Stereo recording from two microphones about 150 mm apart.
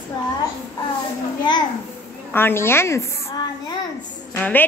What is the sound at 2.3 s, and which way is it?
A woman's voice, 15° left (ahead or behind).